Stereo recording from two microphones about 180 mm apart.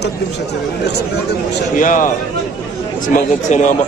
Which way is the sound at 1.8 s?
45° left (ahead or behind).